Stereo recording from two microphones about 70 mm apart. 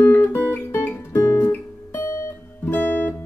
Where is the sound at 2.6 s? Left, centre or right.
Left.